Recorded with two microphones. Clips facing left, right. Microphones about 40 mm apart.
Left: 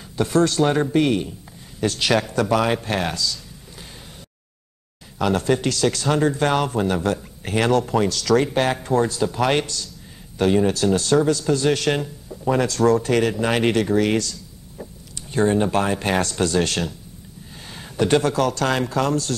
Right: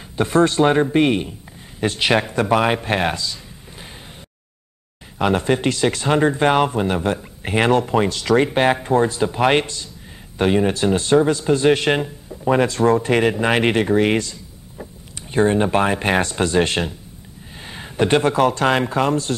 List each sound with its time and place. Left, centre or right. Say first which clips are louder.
0.1 s speech: right 2 dB; right
5.2 s speech: right 2 dB; right